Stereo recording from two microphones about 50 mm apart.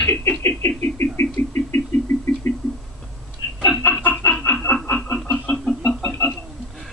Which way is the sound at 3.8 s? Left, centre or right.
Left.